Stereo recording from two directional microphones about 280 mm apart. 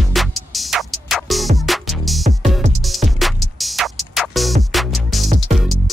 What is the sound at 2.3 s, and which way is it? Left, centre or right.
Music, right.